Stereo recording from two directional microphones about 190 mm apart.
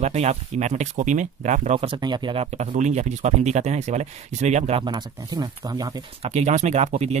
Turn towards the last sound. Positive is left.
turn(degrees=-35)  # may be behind; listen again after turning